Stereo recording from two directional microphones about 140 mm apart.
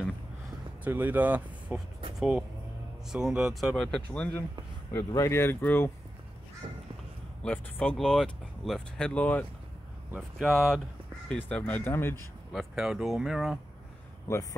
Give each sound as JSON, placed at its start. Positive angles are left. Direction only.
{"t": 0.8, "sound": "speech", "side_deg": -10}
{"t": 4.9, "sound": "speech", "side_deg": 20}
{"t": 6.6, "sound": "a sound", "side_deg": -40}
{"t": 7.4, "sound": "speech", "side_deg": 10}
{"t": 10.1, "sound": "speech", "side_deg": 0}
{"t": 12.5, "sound": "speech", "side_deg": 0}